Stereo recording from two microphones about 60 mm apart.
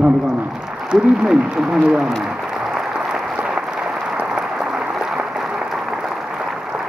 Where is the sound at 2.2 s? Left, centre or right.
Centre.